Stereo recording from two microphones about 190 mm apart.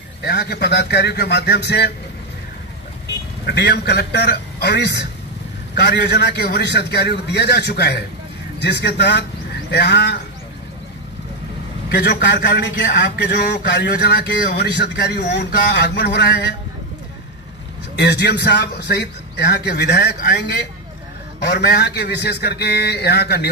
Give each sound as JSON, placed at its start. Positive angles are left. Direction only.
{"t": 0.2, "sound": "a man's voice", "side_deg": 60}
{"t": 3.4, "sound": "a man's voice", "side_deg": 60}
{"t": 11.9, "sound": "a man's voice", "side_deg": 60}
{"t": 17.9, "sound": "a man's voice", "side_deg": 60}